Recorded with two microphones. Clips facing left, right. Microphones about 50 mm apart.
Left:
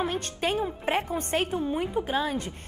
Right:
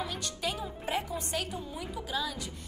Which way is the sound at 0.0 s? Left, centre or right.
Left.